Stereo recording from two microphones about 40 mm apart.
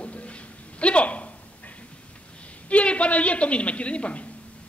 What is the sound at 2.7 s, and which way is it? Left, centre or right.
A woman's voice, left.